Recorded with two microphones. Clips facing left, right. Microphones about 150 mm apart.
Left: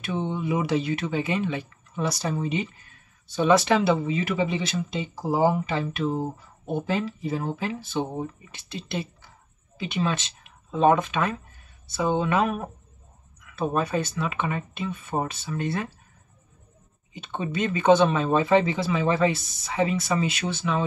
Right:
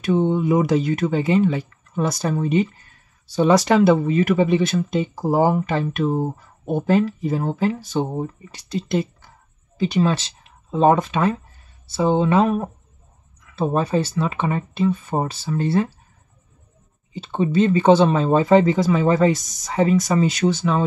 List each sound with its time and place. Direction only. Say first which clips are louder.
0.0 s speech: right 9 dB; 40° right (ahead or behind)
2.0 s speech: right 5 dB; 50° right (ahead or behind)
3.3 s speech: right 4 dB; 35° right (ahead or behind)
17.1 s speech: right 9 dB; 30° right (ahead or behind)